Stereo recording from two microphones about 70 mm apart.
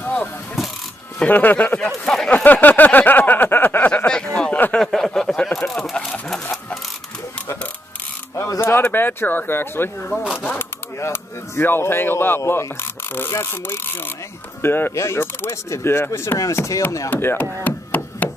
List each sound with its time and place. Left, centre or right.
0.0 s mechanisms: left
0.6 s mechanisms: centre
1.2 s speech: left
1.9 s speech: centre
2.2 s a sound: left
4.7 s a sound: centre
8.5 s speech: left
17.1 s speech: left
17.6 s a sound: left